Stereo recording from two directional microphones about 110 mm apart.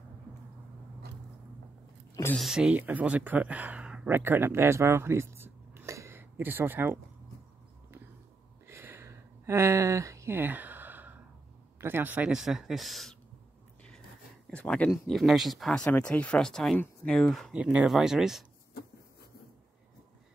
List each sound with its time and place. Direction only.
2.3 s speech: 5° right (ahead or behind); by 7.0 s 20° right (ahead or behind)
8.6 s a sound: 20° right (ahead or behind)
11.8 s speech: 20° right (ahead or behind); by 13.1 s centre (ahead or behind)
14.5 s speech: 10° left (ahead or behind)
14.9 s speech: centre (ahead or behind)
17.6 s speech: 10° right (ahead or behind)